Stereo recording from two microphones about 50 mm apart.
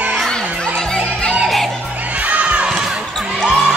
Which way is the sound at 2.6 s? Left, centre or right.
Centre.